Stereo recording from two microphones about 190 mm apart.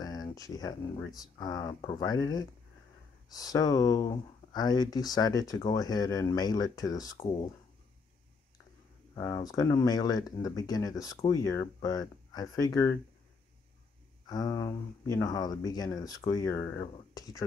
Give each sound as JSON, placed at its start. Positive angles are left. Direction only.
{"t": 0.0, "sound": "speech", "side_deg": 20}
{"t": 9.1, "sound": "speech", "side_deg": 20}
{"t": 14.2, "sound": "speech", "side_deg": 20}